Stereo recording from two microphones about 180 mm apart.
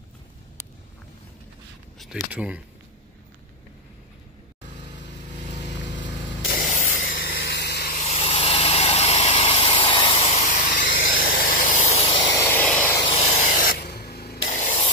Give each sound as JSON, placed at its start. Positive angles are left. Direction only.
{"t": 2.3, "sound": "speech", "side_deg": -5}
{"t": 6.4, "sound": "spray", "side_deg": 55}
{"t": 7.3, "sound": "vehicle", "side_deg": 70}
{"t": 8.0, "sound": "vehicle", "side_deg": 35}
{"t": 12.2, "sound": "a sound", "side_deg": 20}
{"t": 13.0, "sound": "spray", "side_deg": 35}